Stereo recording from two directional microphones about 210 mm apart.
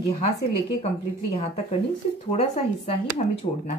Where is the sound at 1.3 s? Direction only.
30° left (ahead or behind).